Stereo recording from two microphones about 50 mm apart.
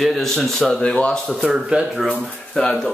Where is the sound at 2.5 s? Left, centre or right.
Centre.